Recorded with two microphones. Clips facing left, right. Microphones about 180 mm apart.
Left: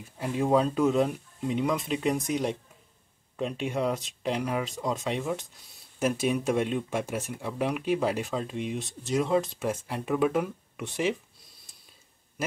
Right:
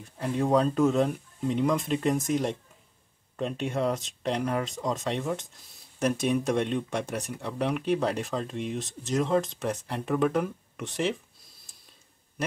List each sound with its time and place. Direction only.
0.0 s speech: 5° left (ahead or behind)